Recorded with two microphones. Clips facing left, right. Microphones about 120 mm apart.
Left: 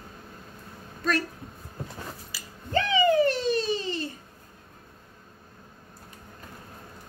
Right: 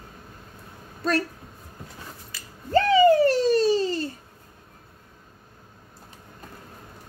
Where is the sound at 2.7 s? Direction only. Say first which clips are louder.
Right 6 dB; 40° right (ahead or behind).